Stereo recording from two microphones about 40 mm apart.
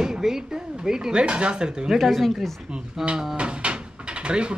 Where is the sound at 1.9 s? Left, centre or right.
Centre.